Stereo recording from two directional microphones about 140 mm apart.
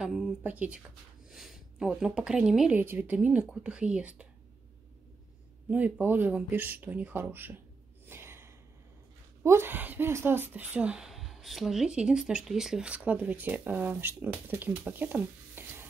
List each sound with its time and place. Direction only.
0.0 s speech: 10° right (ahead or behind)
5.7 s speech: 10° right (ahead or behind)
8.1 s gasp: 15° right (ahead or behind)
9.4 s speech: 15° right (ahead or behind)